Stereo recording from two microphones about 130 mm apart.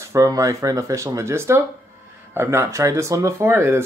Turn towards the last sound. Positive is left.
turn(degrees=-20)  # may be behind; listen again after turning